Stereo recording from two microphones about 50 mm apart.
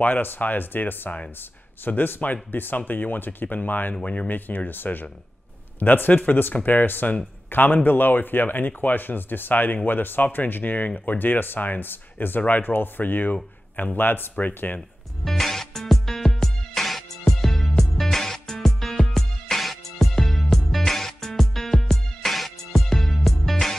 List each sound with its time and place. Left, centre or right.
0.0 s speech: left
15.2 s music: centre